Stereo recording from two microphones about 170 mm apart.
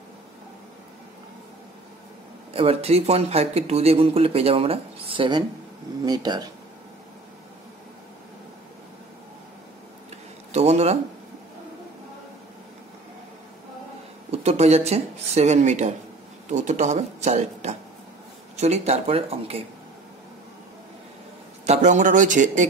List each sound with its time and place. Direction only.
2.5 s speech: 35° right (ahead or behind)
10.5 s speech: 40° right (ahead or behind)
14.3 s speech: 35° right (ahead or behind)
21.6 s speech: 45° right (ahead or behind)